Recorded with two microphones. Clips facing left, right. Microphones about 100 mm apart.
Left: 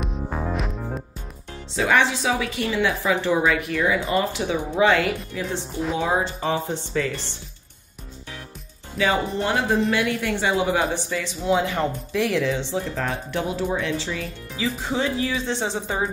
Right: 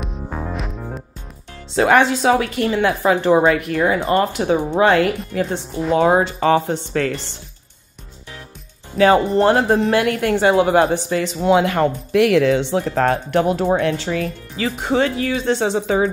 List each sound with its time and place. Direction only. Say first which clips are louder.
0.0 s music: even; centre (ahead or behind)
1.8 s a woman's voice: right 6 dB; 50° right (ahead or behind)
5.6 s speech: right 6 dB; centre (ahead or behind)
5.9 s speech: right 10 dB; 60° right (ahead or behind)
6.7 s speech: right 5 dB; 55° right (ahead or behind)
8.9 s speech: right 9 dB; 50° right (ahead or behind); by 16.1 s 70° right (ahead or behind)